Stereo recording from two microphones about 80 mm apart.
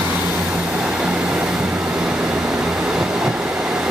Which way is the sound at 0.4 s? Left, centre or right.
Centre.